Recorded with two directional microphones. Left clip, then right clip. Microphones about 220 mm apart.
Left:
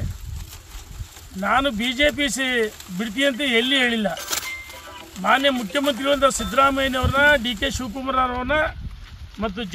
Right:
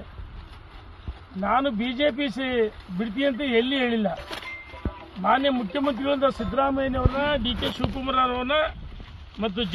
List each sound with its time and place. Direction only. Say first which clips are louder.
1.4 s speech: left 3 dB; 10° left (ahead or behind)
5.2 s speech: left 3 dB; 10° left (ahead or behind)
6.5 s a man's voice: left 5 dB; 35° left (ahead or behind)
7.2 s speech: left 11 dB; 10° left (ahead or behind)